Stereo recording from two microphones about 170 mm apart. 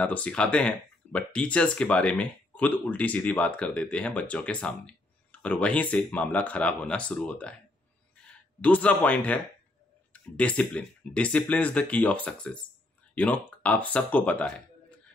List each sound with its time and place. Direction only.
0.0 s speech: 10° left (ahead or behind)